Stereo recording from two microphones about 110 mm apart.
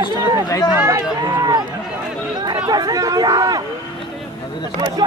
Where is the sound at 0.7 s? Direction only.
25° right (ahead or behind).